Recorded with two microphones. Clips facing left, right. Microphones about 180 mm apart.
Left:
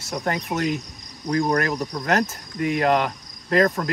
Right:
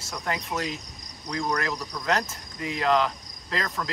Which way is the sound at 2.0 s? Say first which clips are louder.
Left 4 dB; 55° left (ahead or behind).